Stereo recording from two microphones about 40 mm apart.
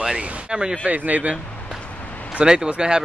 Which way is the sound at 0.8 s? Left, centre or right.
Right.